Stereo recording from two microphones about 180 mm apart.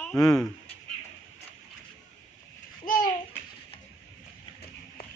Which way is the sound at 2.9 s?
50° left (ahead or behind).